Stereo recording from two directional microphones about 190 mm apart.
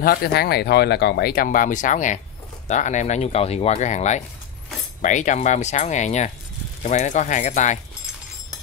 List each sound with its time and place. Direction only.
0.0 s speech: 55° left (ahead or behind)